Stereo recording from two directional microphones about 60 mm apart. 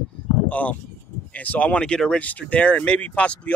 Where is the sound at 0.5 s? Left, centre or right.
Left.